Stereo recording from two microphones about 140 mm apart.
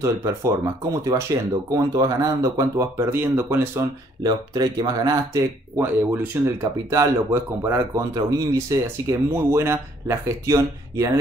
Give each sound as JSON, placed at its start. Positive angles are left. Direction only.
{"t": 0.0, "sound": "speech", "side_deg": -20}